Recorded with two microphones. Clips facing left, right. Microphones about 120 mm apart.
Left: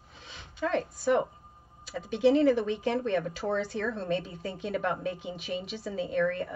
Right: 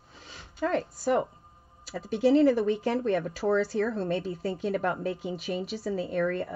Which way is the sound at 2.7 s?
45° right (ahead or behind).